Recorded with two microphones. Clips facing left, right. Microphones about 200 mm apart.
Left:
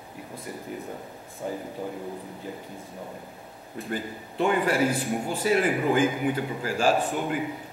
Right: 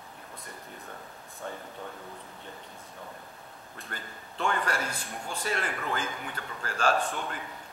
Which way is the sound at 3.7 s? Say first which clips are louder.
Left 12 dB; 10° left (ahead or behind).